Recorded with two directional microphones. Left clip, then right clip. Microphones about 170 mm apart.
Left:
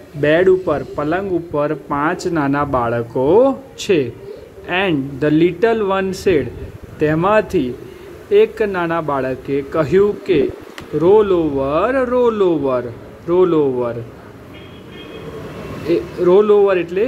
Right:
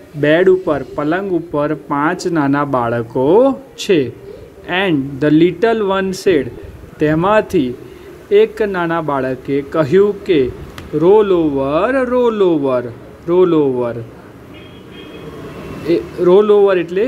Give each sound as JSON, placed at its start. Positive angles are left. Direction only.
{"t": 0.2, "sound": "speech", "side_deg": -20}
{"t": 15.9, "sound": "speech", "side_deg": -20}